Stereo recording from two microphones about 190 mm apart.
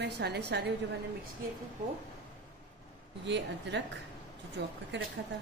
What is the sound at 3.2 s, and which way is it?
A woman's voice, 65° right (ahead or behind).